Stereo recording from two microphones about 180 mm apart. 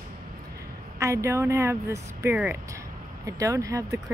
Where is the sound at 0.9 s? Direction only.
15° right (ahead or behind).